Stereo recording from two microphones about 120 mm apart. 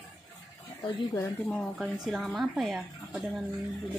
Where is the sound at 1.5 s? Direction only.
5° left (ahead or behind).